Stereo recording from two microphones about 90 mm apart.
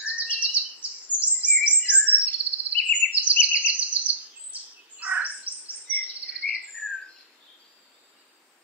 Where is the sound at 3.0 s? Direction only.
10° left (ahead or behind).